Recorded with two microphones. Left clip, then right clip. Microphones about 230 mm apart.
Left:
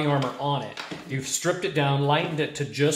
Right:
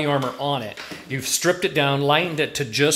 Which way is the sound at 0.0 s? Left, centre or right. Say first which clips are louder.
Right 3 dB; right.